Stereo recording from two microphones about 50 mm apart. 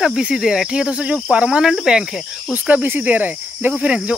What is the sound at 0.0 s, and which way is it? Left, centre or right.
Speech, centre.